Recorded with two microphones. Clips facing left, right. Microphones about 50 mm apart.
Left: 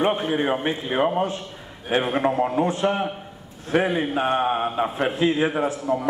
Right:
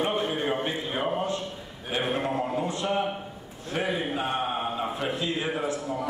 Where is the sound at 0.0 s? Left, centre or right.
Left.